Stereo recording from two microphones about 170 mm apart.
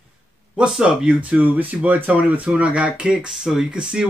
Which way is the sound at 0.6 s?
5° right (ahead or behind).